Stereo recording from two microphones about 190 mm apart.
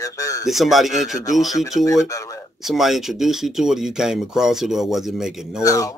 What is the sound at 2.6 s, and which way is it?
Speech, centre (ahead or behind).